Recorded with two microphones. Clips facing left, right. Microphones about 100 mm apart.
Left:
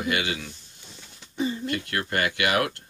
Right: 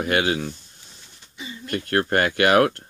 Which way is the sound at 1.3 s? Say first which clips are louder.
Left 10 dB; 40° left (ahead or behind).